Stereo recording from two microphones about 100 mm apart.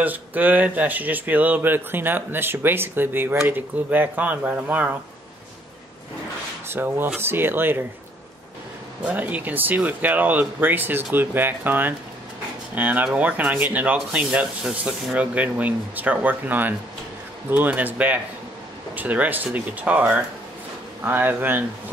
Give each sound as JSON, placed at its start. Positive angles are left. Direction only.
{"t": 0.0, "sound": "speech", "side_deg": -15}
{"t": 6.7, "sound": "speech", "side_deg": -20}
{"t": 9.0, "sound": "speech", "side_deg": -15}